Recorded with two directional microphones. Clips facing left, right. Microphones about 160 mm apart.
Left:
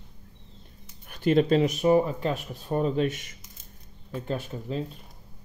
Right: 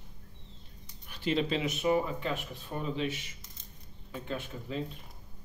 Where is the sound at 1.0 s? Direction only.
50° left (ahead or behind).